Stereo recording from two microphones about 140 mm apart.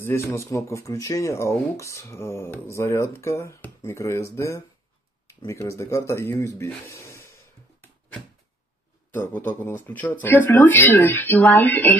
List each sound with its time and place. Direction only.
0.0 s speech: 20° left (ahead or behind)
9.1 s speech: 15° left (ahead or behind)